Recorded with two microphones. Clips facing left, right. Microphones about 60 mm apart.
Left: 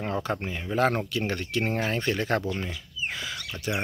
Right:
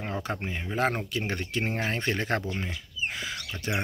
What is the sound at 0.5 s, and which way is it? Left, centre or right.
Speech, right.